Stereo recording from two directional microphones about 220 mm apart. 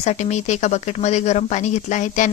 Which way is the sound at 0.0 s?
30° left (ahead or behind).